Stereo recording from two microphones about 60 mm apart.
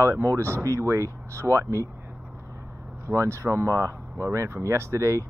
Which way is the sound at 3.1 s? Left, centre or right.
Right.